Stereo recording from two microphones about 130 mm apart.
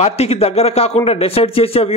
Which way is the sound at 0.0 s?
55° left (ahead or behind).